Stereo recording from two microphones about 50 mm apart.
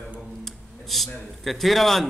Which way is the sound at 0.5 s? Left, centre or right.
Centre.